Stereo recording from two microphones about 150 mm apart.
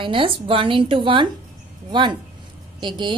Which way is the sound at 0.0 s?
35° right (ahead or behind).